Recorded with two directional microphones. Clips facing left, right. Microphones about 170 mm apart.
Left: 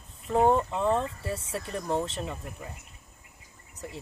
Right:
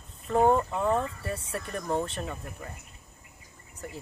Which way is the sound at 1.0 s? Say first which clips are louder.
Even; 25° left (ahead or behind).